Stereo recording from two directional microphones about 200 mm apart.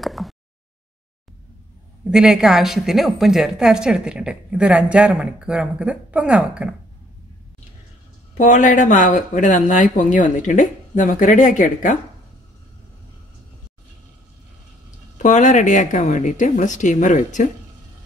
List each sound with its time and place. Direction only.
0.0 s a sound: centre (ahead or behind)
2.0 s a woman's voice: 5° right (ahead or behind)
8.4 s speech: 40° left (ahead or behind)
15.2 s speech: 35° left (ahead or behind)